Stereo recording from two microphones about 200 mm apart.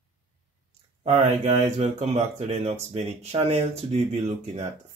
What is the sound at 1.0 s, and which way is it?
Speech, 35° right (ahead or behind).